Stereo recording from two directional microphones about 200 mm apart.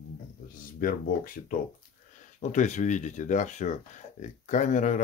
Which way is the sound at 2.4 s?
35° left (ahead or behind).